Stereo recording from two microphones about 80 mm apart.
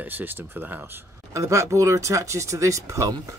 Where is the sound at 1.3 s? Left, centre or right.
Right.